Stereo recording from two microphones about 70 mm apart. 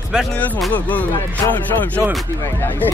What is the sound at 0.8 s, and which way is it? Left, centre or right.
Speech, left.